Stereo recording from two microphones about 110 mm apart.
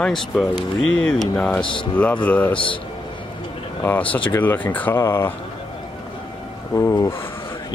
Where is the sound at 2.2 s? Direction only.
15° left (ahead or behind).